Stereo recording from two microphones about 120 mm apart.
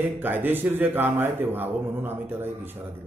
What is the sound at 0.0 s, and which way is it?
A man's voice, 15° right (ahead or behind).